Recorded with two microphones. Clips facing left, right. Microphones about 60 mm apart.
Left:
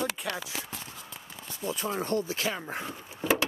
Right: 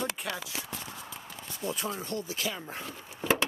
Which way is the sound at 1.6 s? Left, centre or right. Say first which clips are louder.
Left 1 dB; centre.